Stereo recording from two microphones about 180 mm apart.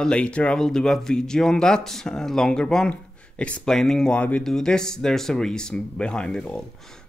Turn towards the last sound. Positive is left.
turn(degrees=5)  # may be behind; listen again after turning